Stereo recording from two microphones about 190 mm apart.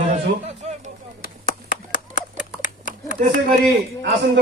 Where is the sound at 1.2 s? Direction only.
50° left (ahead or behind).